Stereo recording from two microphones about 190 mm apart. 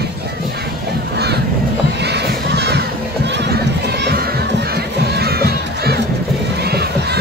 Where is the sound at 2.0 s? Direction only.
60° right (ahead or behind).